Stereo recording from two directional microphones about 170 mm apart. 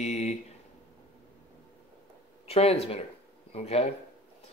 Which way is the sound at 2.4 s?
35° left (ahead or behind).